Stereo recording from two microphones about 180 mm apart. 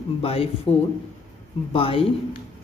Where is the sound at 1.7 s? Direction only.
30° left (ahead or behind).